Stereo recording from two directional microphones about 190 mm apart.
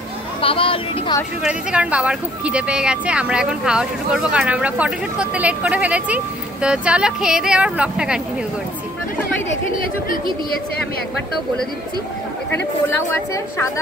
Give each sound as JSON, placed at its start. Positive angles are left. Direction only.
{"t": 0.4, "sound": "speech", "side_deg": 30}
{"t": 1.4, "sound": "speech", "side_deg": -5}
{"t": 13.1, "sound": "speech", "side_deg": 15}